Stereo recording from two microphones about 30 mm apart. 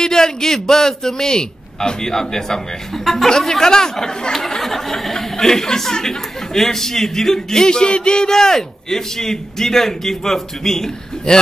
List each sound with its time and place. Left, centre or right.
0.0 s a man's voice: left
8.3 s speech: centre